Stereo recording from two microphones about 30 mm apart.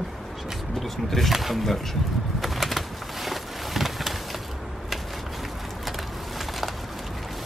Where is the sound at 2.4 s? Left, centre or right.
Centre.